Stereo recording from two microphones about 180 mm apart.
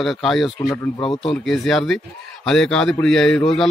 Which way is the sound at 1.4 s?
Centre (ahead or behind).